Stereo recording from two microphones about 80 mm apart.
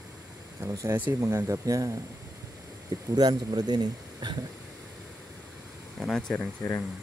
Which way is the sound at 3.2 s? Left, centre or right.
Right.